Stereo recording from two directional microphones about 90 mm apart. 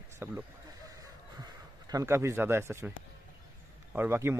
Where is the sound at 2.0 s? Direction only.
30° right (ahead or behind).